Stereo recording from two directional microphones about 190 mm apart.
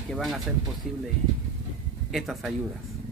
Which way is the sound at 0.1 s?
Centre (ahead or behind).